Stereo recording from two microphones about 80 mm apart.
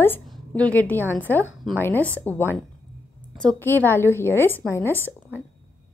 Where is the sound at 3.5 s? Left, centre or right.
Left.